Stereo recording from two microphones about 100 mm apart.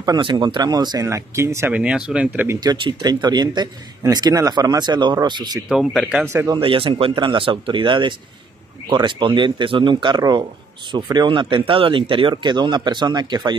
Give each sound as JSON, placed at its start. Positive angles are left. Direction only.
{"t": 0.0, "sound": "speech", "side_deg": -50}
{"t": 1.0, "sound": "speech", "side_deg": -30}
{"t": 1.7, "sound": "speech", "side_deg": -10}
{"t": 2.6, "sound": "speech", "side_deg": -45}
{"t": 5.7, "sound": "speech", "side_deg": -5}
{"t": 6.2, "sound": "speech", "side_deg": -30}
{"t": 6.6, "sound": "speech", "side_deg": -60}